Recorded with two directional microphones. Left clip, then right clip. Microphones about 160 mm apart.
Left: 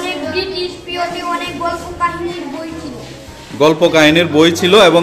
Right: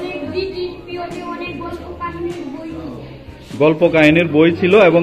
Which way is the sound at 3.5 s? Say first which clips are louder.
Left 2 dB; 20° left (ahead or behind).